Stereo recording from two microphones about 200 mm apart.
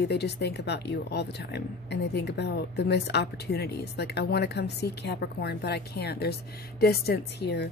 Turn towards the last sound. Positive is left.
turn(degrees=55)  # may be behind; listen again after turning